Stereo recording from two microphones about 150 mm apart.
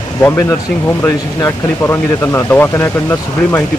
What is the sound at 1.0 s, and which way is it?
Speech, 15° left (ahead or behind).